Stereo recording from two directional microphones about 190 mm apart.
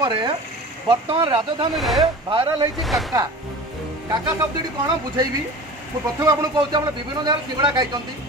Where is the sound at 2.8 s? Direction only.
Centre (ahead or behind).